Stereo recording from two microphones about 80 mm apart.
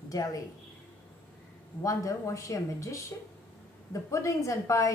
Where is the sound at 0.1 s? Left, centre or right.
Left.